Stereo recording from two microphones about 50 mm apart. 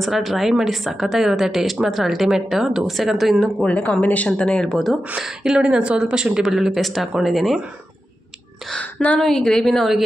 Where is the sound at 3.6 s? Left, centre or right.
Left.